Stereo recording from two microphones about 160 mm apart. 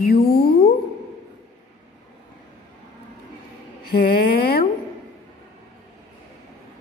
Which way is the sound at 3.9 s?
70° left (ahead or behind).